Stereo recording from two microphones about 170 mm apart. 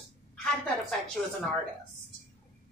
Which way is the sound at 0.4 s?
5° left (ahead or behind).